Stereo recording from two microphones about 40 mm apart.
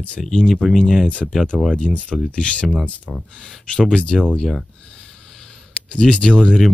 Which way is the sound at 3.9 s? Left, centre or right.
Left.